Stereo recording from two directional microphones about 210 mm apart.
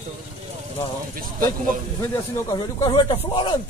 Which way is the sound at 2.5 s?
20° left (ahead or behind).